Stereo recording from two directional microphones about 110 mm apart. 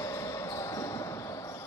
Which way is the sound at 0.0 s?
30° left (ahead or behind).